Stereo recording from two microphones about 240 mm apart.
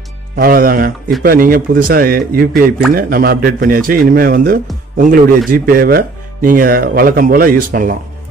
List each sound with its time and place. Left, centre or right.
0.4 s speech: right